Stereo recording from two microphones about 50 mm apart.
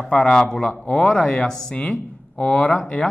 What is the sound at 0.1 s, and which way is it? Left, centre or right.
A woman's voice, centre.